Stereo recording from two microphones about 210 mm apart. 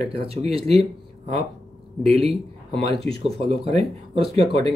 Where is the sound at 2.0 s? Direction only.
30° right (ahead or behind).